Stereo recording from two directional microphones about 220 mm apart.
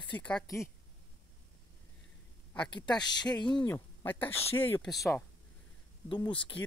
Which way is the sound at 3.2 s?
5° left (ahead or behind).